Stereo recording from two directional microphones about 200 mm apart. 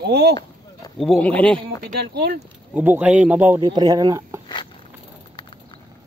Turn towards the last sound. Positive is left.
turn(degrees=-15)  # may be behind; listen again after turning